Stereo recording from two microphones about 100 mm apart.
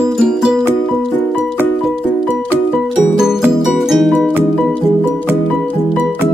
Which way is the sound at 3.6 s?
Centre (ahead or behind).